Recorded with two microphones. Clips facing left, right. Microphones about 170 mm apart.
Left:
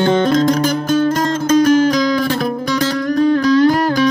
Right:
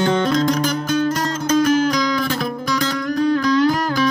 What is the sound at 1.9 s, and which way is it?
Music, 35° left (ahead or behind).